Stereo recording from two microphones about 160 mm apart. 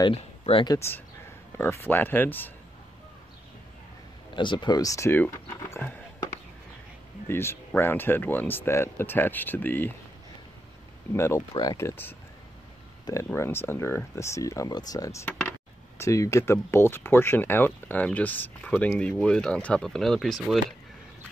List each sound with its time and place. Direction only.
0.0 s speech: 35° left (ahead or behind)
0.7 s speech: 15° left (ahead or behind)
4.4 s speech: 30° left (ahead or behind); by 5.9 s 15° left (ahead or behind)
7.2 s speech: 15° left (ahead or behind)
11.1 s speech: 20° left (ahead or behind); by 20.6 s centre (ahead or behind)